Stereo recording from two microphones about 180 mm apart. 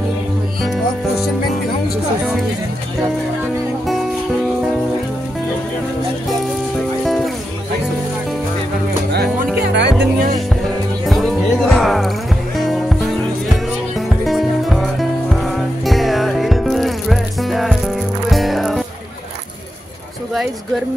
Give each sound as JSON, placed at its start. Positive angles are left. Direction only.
{"t": 9.6, "sound": "music", "side_deg": -70}
{"t": 11.1, "sound": "music", "side_deg": 0}